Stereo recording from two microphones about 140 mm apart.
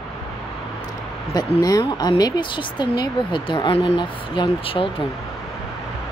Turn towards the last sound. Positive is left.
turn(degrees=40)  # may be behind; listen again after turning